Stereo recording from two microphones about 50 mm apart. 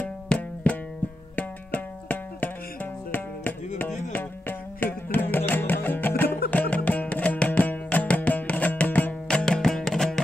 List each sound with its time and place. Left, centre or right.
0.0 s music: left
9.3 s music: centre